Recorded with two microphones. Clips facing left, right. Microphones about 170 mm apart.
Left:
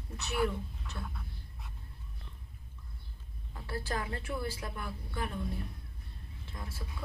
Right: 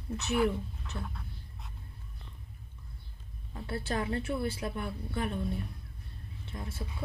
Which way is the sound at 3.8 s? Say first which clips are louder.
Right 6 dB; 25° right (ahead or behind).